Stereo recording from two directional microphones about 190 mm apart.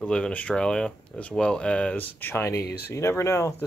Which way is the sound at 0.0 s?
5° left (ahead or behind).